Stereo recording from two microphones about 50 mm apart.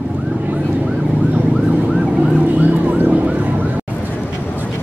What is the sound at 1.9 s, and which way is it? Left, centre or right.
Emergency vehicle, centre.